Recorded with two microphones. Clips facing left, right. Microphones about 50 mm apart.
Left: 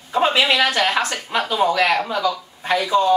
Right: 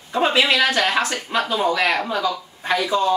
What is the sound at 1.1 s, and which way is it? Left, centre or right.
Speech, centre.